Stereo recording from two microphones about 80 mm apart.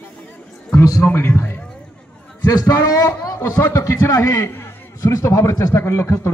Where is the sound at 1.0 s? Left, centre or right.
Left.